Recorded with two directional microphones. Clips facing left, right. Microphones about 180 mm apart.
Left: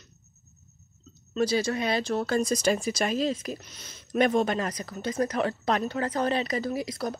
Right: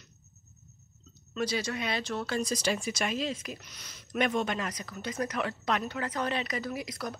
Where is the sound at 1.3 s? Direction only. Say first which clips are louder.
Left 6 dB; 30° left (ahead or behind).